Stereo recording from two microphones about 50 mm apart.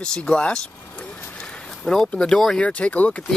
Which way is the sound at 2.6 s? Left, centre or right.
Left.